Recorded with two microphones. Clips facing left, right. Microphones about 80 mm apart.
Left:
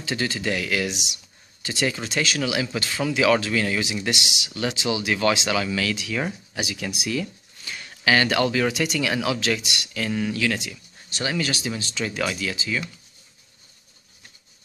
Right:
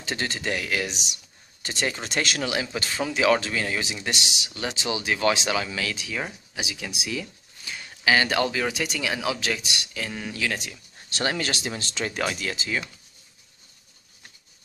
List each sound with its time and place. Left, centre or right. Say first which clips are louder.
0.1 s speech: left 3 dB; right
2.7 s speech: left 2 dB; right
6.1 s speech: left 4 dB; centre
11.2 s speech: left 1 dB; right
12.4 s speech: left 1 dB; right